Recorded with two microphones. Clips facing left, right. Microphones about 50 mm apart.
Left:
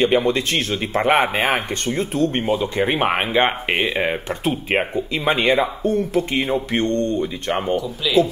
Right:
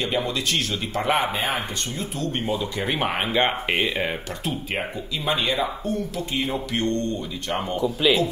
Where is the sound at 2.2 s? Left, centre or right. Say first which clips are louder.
Left 5 dB; left.